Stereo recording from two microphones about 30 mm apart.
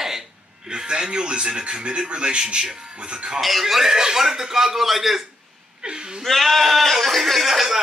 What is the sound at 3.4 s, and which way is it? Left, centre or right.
A man's voice, centre.